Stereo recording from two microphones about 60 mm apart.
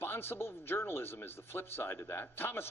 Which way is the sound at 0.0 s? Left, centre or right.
Left.